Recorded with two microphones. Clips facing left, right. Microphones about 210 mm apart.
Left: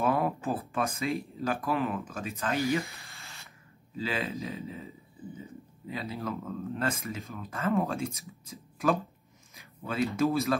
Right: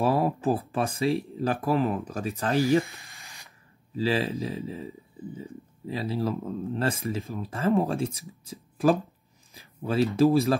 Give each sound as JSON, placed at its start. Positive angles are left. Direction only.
{"t": 0.0, "sound": "speech", "side_deg": -35}
{"t": 2.8, "sound": "a sound", "side_deg": -20}
{"t": 3.9, "sound": "speech", "side_deg": -35}